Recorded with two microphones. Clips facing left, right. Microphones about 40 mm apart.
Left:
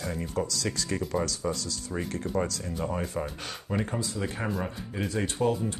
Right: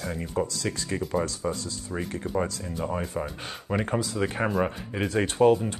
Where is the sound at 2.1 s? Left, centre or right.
Centre.